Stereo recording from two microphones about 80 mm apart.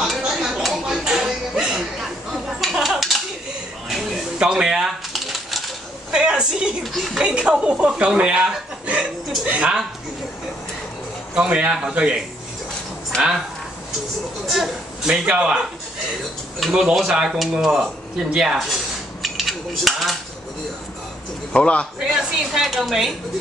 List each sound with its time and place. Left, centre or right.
0.1 s a sound: centre
4.4 s typewriter: centre
6.1 s a sound: centre
6.8 s speech: centre
7.2 s speech: centre
11.3 s speech: centre
14.4 s speech: centre
16.5 s speech: centre
19.2 s a sound: centre
21.5 s a man's voice: centre
22.5 s speech: centre